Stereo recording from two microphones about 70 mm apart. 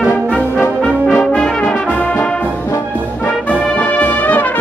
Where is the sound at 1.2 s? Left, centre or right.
Centre.